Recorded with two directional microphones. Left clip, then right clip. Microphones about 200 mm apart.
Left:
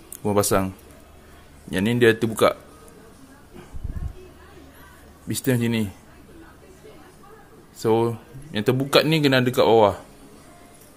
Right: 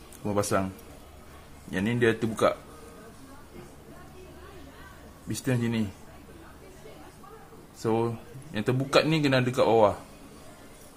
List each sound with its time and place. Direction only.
0.2 s speech: 50° left (ahead or behind)
1.7 s speech: 45° left (ahead or behind)
5.3 s speech: 40° left (ahead or behind)
7.8 s speech: 40° left (ahead or behind)